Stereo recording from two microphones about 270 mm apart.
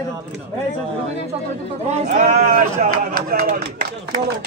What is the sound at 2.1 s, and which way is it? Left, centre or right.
Speech, right.